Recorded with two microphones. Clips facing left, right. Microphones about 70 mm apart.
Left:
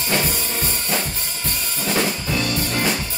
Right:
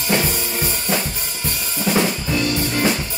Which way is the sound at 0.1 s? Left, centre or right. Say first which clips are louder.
Right 3 dB; centre.